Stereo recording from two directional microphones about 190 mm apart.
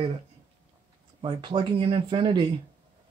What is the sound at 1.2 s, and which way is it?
Speech, 25° right (ahead or behind).